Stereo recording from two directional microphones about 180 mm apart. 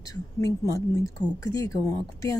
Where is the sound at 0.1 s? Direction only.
20° left (ahead or behind).